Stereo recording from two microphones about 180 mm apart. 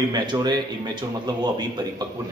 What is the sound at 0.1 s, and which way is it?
Speech, 25° right (ahead or behind).